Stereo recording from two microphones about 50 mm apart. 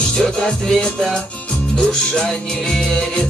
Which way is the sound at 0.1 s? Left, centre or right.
Centre.